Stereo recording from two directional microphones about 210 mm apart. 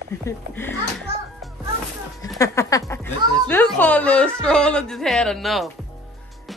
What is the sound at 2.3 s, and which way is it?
A woman's voice, 15° left (ahead or behind).